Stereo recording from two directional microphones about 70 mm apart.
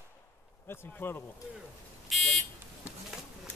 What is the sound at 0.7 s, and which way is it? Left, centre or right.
Speech, left.